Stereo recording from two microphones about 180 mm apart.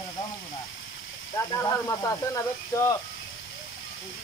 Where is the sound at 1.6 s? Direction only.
20° left (ahead or behind).